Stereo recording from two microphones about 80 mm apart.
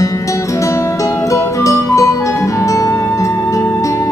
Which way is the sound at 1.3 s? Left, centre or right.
Left.